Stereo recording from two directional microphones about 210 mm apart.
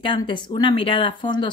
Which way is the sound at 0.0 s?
25° left (ahead or behind).